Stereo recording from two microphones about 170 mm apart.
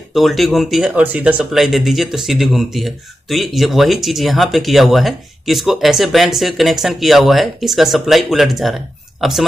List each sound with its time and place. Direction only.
0.1 s speech: centre (ahead or behind)